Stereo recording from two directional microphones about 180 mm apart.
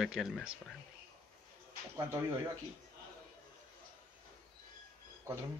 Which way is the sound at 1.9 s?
15° right (ahead or behind).